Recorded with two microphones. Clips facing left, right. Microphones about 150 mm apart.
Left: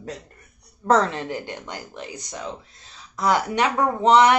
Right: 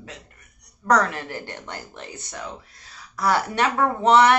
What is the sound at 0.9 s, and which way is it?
Speech, 25° left (ahead or behind).